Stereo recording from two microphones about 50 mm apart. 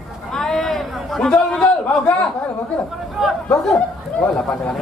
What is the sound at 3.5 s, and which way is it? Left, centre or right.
Speech, left.